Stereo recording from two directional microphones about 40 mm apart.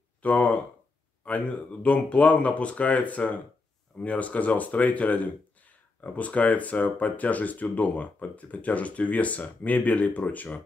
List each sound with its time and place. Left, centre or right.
0.2 s speech: left